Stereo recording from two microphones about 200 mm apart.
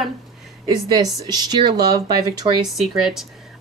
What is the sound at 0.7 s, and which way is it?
Speech, 20° right (ahead or behind).